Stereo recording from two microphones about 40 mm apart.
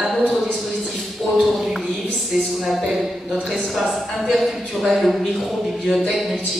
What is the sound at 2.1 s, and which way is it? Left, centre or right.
A woman's voice, centre.